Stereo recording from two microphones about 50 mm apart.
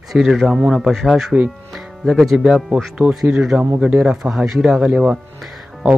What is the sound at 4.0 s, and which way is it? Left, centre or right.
Speech, centre.